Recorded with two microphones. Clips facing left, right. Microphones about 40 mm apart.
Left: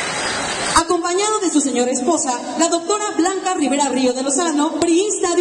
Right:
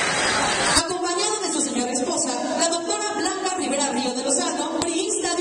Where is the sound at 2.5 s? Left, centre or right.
Left.